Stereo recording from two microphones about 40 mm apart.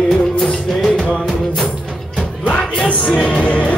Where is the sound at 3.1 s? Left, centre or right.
Left.